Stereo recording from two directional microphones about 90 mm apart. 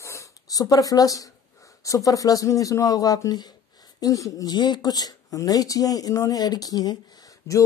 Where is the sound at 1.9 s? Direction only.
40° left (ahead or behind).